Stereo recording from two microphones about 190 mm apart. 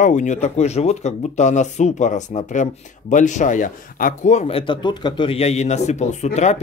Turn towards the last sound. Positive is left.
turn(degrees=35)  # may be behind; listen again after turning